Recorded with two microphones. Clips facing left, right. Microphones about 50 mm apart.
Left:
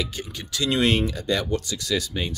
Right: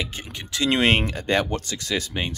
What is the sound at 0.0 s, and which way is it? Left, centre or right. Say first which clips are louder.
Speech: left 1 dB; right.